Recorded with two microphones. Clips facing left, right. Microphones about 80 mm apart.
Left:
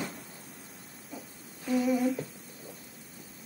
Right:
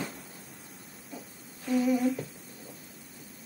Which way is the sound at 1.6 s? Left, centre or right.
Centre.